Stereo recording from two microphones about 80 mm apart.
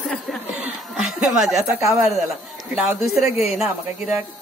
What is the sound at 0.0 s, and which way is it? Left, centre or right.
Chuckle, centre.